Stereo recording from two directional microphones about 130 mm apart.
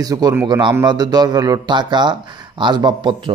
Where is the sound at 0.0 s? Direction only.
30° right (ahead or behind).